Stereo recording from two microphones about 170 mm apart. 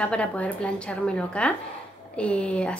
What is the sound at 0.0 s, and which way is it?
A woman's voice, 5° left (ahead or behind).